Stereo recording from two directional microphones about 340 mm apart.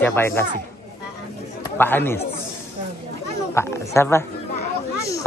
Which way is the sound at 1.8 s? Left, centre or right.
Centre.